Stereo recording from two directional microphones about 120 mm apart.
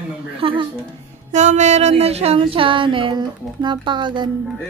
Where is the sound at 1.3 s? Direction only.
75° right (ahead or behind); by 4.3 s 40° right (ahead or behind).